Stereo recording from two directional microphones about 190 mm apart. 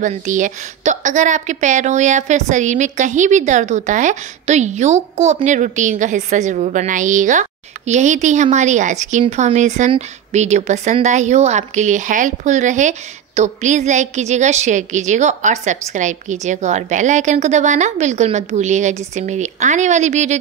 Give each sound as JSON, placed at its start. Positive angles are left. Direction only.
{"t": 0.0, "sound": "speech", "side_deg": -40}